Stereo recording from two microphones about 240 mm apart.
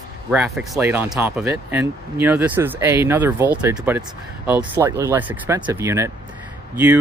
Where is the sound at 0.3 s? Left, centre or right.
Centre.